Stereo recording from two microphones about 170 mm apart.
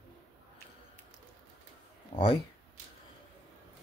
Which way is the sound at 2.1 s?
30° left (ahead or behind).